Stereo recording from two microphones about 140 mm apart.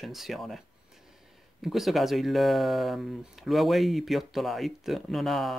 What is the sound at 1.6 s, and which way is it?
Speech, centre (ahead or behind).